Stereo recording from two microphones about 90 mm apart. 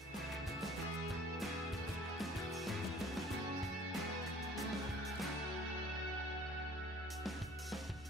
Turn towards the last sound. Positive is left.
turn(degrees=0)  # may be behind; listen again after turning